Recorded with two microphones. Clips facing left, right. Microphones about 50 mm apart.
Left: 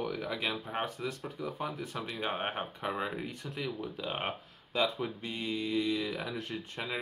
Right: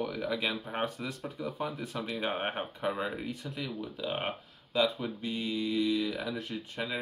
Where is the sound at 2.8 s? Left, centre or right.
Centre.